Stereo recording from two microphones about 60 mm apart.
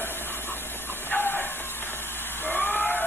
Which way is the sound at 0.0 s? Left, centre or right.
Left.